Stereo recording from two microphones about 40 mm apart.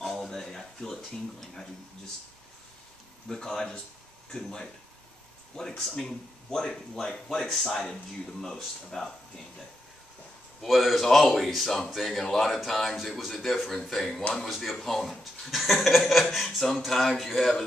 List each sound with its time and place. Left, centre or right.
0.1 s a sound: centre
1.4 s speech: centre
3.3 s speech: centre
10.6 s speech: centre